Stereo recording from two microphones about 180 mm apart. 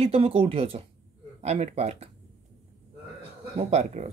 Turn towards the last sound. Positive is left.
turn(degrees=-40)  # may be behind; listen again after turning